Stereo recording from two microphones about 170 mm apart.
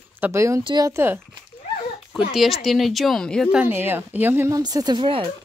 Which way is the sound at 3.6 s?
10° right (ahead or behind).